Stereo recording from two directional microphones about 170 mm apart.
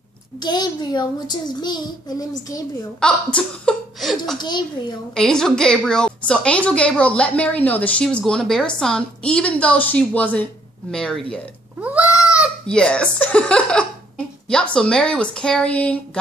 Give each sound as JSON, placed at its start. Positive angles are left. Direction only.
{"t": 0.4, "sound": "a child's voice", "side_deg": 25}
{"t": 3.0, "sound": "a woman's voice", "side_deg": 5}
{"t": 4.4, "sound": "a child's voice", "side_deg": 25}
{"t": 5.1, "sound": "a woman's voice", "side_deg": 5}
{"t": 11.8, "sound": "goat", "side_deg": -10}
{"t": 12.6, "sound": "a woman's voice", "side_deg": 5}